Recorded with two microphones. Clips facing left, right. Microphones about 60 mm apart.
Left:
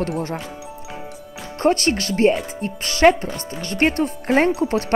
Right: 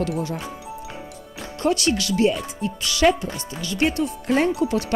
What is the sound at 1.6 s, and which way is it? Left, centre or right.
Speech, left.